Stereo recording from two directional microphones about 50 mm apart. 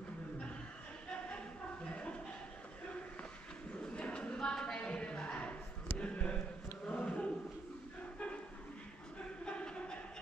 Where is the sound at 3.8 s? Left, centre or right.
Left.